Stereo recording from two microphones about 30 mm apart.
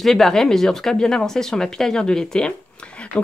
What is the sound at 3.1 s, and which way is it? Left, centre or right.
Speech, left.